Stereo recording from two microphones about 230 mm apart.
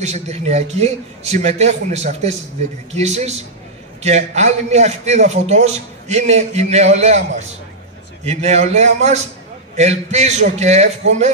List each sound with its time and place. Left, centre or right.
0.0 s a man's voice: right